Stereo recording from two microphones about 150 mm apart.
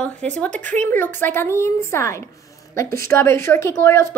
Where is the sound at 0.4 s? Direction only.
10° left (ahead or behind).